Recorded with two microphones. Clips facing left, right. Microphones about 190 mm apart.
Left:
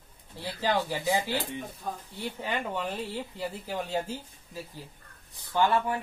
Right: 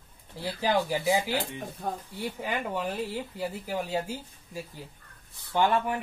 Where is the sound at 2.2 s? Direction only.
10° right (ahead or behind).